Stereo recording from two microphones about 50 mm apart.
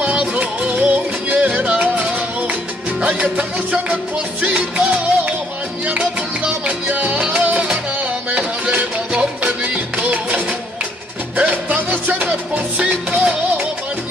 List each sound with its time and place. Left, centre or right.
0.0 s music: centre
12.3 s music: right